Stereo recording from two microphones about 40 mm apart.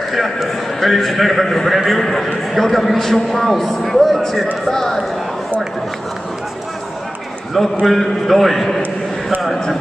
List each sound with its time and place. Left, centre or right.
0.1 s a man's voice: centre
7.8 s a man's voice: centre